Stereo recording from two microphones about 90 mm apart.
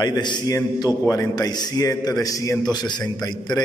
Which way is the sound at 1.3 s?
50° left (ahead or behind).